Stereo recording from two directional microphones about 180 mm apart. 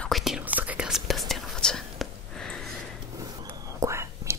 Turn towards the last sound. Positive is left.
turn(degrees=-15)  # may be behind; listen again after turning